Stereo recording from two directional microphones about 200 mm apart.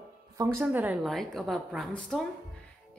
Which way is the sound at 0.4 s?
10° right (ahead or behind).